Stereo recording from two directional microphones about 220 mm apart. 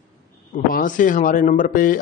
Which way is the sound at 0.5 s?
35° left (ahead or behind).